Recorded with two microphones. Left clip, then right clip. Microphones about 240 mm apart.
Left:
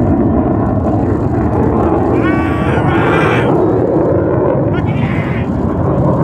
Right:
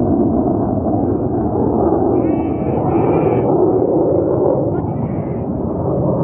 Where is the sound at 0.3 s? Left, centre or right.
Left.